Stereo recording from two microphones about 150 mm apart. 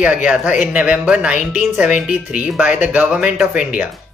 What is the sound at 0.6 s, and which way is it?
A woman's voice, 5° right (ahead or behind).